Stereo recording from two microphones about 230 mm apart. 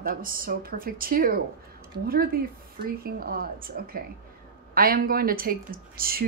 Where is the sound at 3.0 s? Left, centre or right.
Right.